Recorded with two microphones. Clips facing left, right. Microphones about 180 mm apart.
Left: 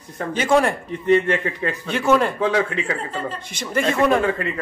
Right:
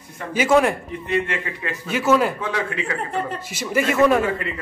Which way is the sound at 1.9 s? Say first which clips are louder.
Even; 5° right (ahead or behind).